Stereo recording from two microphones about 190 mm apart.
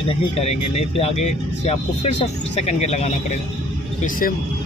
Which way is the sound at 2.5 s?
35° left (ahead or behind).